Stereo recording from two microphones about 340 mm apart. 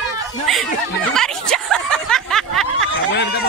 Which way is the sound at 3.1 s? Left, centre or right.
Left.